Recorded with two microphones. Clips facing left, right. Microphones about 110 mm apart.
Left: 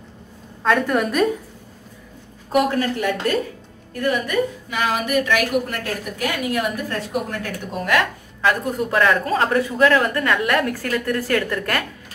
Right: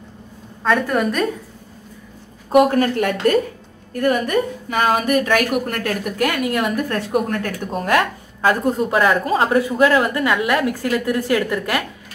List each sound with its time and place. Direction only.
0.7 s a woman's voice: centre (ahead or behind)
2.7 s a woman's voice: 55° right (ahead or behind)
8.4 s a woman's voice: 30° right (ahead or behind)
10.3 s a woman's voice: 5° right (ahead or behind)